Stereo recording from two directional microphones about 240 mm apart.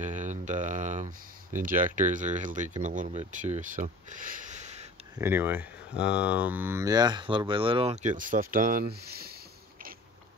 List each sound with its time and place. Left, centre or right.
0.0 s speech: right
5.2 s speech: centre; by 9.3 s right